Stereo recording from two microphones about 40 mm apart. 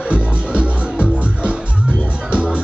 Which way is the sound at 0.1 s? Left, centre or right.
Right.